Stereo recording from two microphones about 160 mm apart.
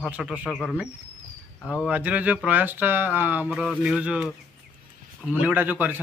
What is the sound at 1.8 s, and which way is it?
Speech, 10° right (ahead or behind).